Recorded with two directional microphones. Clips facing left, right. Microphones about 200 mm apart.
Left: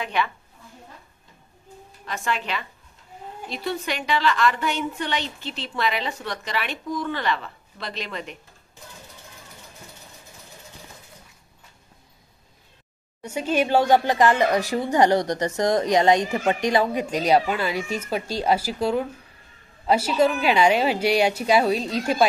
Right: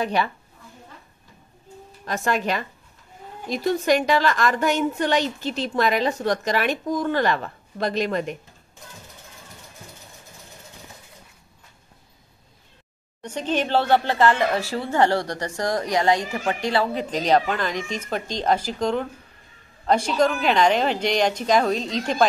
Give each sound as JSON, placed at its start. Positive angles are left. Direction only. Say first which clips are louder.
{"t": 0.0, "sound": "a woman's voice", "louder": "right 3 dB", "side_deg": -35}
{"t": 2.0, "sound": "a woman's voice", "louder": "right 5 dB", "side_deg": -45}
{"t": 13.2, "sound": "speech", "louder": "left 2 dB", "side_deg": 10}